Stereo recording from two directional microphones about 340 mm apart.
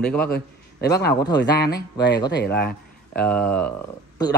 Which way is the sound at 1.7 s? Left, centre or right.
Left.